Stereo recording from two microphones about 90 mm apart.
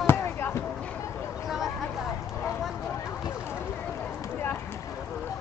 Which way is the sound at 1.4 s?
5° right (ahead or behind).